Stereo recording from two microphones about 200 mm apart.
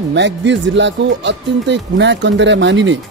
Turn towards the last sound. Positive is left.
turn(degrees=-65)  # may be behind; listen again after turning